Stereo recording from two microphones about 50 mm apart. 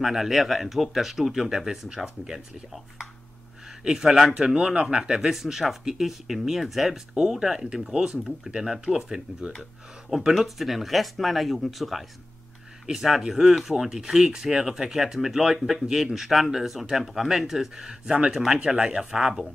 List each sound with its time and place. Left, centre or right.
0.0 s speech: centre
3.8 s speech: centre
5.2 s speech: centre